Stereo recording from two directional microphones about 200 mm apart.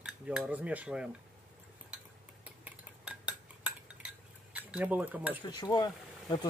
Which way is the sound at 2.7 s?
5° right (ahead or behind).